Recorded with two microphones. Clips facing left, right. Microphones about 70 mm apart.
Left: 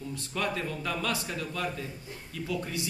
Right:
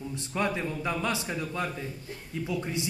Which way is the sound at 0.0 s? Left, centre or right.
Right.